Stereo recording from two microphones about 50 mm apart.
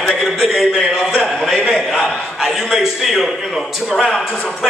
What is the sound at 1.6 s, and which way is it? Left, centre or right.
A man's voice, centre.